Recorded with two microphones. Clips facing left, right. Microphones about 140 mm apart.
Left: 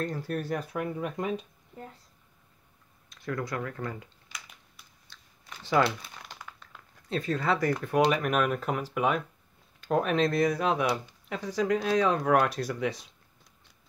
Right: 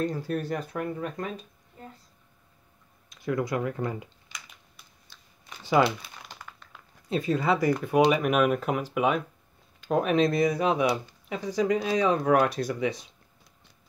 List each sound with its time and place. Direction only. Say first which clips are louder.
0.0 s speech: right 3 dB; centre (ahead or behind)
3.1 s speech: right 5 dB; 10° right (ahead or behind)
4.3 s typing: left 1 dB; 5° left (ahead or behind)
5.1 s a sound: even; 10° right (ahead or behind)
5.9 s speech: right 2 dB; 5° right (ahead or behind)